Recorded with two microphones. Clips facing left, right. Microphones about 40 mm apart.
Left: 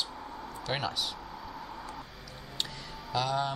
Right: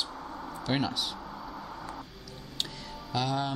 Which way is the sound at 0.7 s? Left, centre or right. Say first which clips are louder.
Right 3 dB; centre.